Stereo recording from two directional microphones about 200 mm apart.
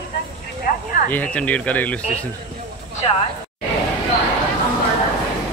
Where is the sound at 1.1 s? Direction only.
10° left (ahead or behind).